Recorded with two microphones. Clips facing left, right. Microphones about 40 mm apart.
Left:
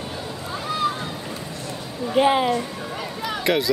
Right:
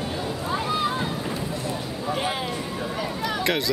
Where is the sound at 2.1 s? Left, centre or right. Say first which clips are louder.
Left 10 dB; centre.